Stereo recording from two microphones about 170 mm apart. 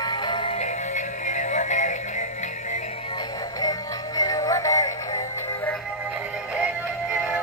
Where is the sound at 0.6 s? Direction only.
45° left (ahead or behind).